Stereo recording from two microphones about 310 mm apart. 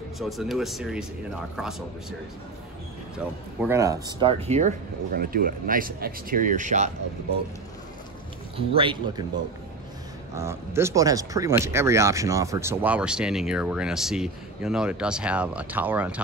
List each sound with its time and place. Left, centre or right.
0.2 s speech: centre
3.2 s speech: centre; by 6.9 s right
8.5 s a man's voice: centre
10.3 s speech: centre